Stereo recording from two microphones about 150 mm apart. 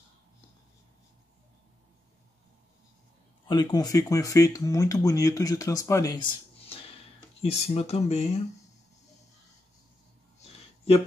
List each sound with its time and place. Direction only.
3.4 s speech: 25° left (ahead or behind); by 8.4 s 45° left (ahead or behind)